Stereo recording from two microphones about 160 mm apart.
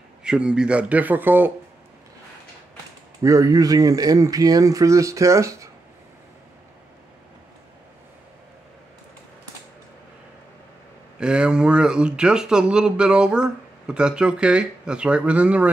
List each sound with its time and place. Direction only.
0.2 s speech: 5° right (ahead or behind)
3.2 s speech: 20° right (ahead or behind)
11.1 s speech: 5° right (ahead or behind)